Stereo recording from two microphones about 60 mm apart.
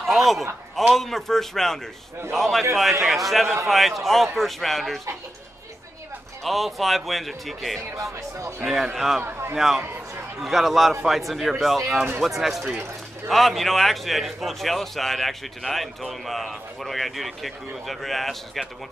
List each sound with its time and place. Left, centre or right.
0.0 s a man's voice: centre
6.4 s a man's voice: centre
7.9 s speech: right
8.6 s a man's voice: centre
9.2 s a man's voice: right
10.4 s a man's voice: centre